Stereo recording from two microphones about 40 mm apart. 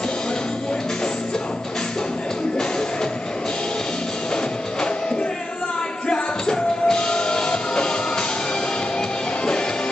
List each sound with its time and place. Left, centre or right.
6.0 s music: left